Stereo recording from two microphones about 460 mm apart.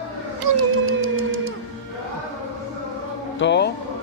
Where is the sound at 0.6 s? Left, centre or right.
Right.